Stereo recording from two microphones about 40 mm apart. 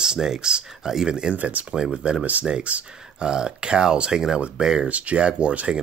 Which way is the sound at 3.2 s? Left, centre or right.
Centre.